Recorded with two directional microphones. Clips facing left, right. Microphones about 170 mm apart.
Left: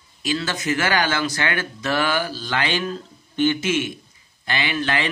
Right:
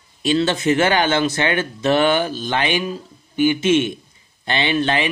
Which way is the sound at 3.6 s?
25° right (ahead or behind).